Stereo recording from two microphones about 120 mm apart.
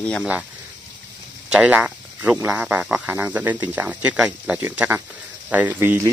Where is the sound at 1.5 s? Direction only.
10° right (ahead or behind).